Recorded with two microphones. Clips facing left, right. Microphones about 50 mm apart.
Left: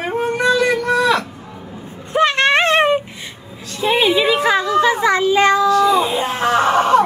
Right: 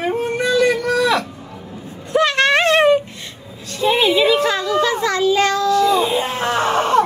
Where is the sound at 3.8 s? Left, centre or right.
Centre.